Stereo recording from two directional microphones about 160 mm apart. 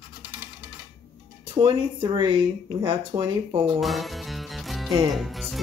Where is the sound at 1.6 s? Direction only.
30° right (ahead or behind).